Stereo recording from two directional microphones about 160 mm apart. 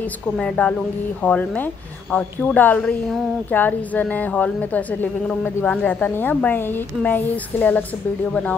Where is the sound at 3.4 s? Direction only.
10° left (ahead or behind).